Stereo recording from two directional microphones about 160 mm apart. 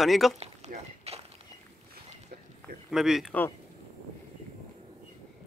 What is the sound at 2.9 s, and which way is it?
Speech, centre (ahead or behind).